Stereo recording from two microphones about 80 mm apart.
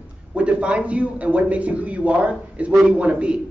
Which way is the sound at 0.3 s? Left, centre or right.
Centre.